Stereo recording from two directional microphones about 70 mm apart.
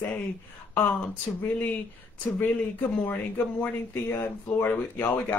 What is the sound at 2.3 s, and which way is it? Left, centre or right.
Speech, left.